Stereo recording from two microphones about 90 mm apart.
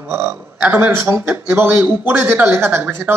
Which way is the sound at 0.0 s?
25° right (ahead or behind).